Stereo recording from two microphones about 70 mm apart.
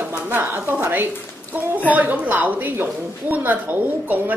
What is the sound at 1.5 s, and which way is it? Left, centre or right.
Speech, right.